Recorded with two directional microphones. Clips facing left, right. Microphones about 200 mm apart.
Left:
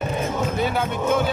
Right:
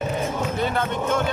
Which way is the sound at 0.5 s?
5° left (ahead or behind).